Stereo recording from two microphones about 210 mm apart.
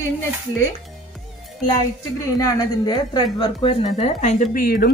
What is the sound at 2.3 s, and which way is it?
Speech, 20° left (ahead or behind).